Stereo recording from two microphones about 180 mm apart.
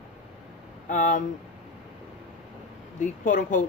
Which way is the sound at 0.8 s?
45° left (ahead or behind).